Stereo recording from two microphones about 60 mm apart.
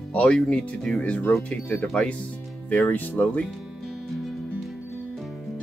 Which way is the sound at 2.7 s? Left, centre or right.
Left.